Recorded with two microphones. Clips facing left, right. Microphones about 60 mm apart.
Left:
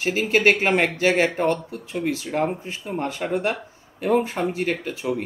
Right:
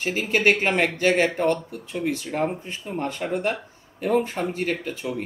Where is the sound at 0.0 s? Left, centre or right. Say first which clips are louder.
Left 2 dB; centre.